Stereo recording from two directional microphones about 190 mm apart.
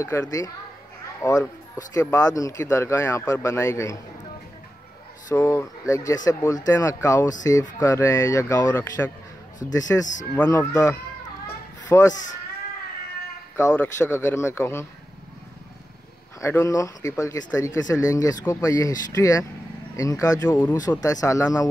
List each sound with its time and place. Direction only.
0.0 s speech: 15° left (ahead or behind)
5.3 s speech: 15° left (ahead or behind)
11.4 s children playing: 15° left (ahead or behind)
12.1 s speech: 40° left (ahead or behind)
13.6 s speech: 15° left (ahead or behind)
16.3 s speech: 15° left (ahead or behind)